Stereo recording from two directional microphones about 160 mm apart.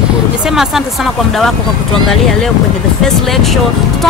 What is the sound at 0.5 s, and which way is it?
Speech, centre (ahead or behind).